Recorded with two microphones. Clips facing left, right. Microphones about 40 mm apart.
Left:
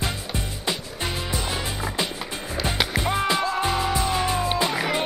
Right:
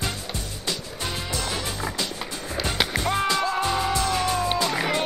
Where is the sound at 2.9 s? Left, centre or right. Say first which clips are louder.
Left 1 dB; centre.